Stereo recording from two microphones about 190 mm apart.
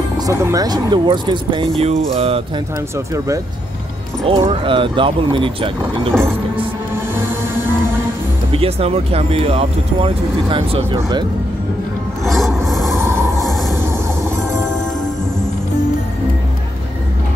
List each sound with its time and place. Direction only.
0.3 s speech: 15° right (ahead or behind)
4.3 s speech: 25° right (ahead or behind)
8.5 s speech: 30° right (ahead or behind)
12.3 s filing: centre (ahead or behind)
12.6 s train: centre (ahead or behind)